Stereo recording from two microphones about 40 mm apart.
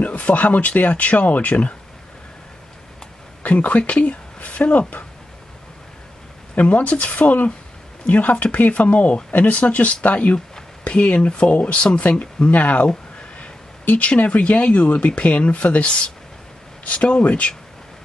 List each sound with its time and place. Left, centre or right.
0.0 s speech: left
3.4 s speech: left
6.5 s speech: left
12.4 s speech: left